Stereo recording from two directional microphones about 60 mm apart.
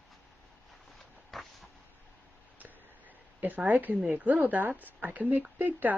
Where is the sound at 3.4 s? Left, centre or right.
Right.